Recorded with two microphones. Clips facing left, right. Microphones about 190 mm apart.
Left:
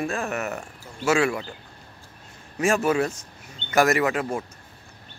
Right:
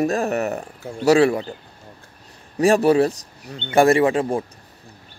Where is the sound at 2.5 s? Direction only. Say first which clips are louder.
Right 6 dB; 35° right (ahead or behind).